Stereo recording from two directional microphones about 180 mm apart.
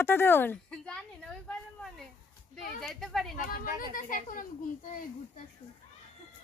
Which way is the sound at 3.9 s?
50° left (ahead or behind).